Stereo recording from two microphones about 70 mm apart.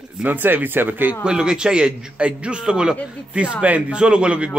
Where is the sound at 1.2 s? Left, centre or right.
Centre.